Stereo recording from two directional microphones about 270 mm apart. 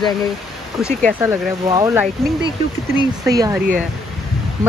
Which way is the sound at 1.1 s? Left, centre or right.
Centre.